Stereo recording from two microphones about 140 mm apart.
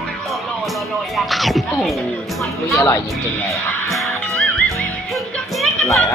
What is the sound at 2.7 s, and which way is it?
Speech, 20° left (ahead or behind).